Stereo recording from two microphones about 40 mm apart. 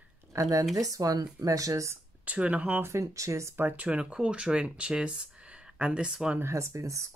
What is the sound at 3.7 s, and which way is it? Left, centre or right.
Speech, right.